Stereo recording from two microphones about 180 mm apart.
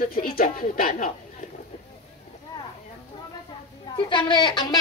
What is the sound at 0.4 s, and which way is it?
Speech, 50° left (ahead or behind).